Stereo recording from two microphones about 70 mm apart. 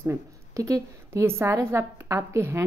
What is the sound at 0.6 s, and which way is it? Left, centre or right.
Speech, right.